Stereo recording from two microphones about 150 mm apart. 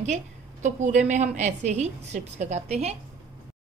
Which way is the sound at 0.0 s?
50° right (ahead or behind).